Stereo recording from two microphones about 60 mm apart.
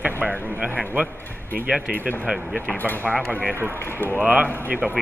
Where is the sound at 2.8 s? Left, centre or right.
Left.